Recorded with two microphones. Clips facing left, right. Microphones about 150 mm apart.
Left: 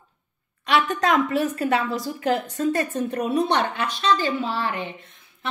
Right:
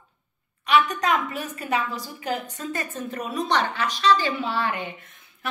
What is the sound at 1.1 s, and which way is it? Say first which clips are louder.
A woman's voice: left 6 dB; 80° left.